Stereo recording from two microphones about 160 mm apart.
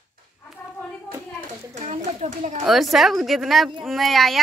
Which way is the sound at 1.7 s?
45° right (ahead or behind).